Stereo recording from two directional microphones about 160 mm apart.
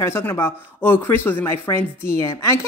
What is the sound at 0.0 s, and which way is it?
A woman's voice, 15° left (ahead or behind).